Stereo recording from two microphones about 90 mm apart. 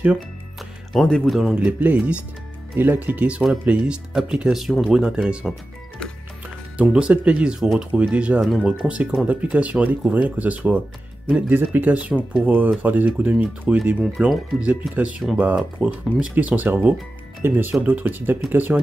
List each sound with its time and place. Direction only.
1.0 s speech: 5° left (ahead or behind)
6.8 s speech: 10° right (ahead or behind)
7.9 s speech: 15° right (ahead or behind)
8.4 s speech: centre (ahead or behind)
8.8 s speech: 15° right (ahead or behind)